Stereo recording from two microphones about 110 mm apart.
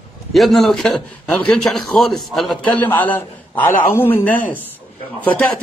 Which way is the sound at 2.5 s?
15° left (ahead or behind).